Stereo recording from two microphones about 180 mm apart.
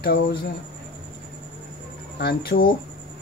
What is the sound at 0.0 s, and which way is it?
Speech, 65° left (ahead or behind).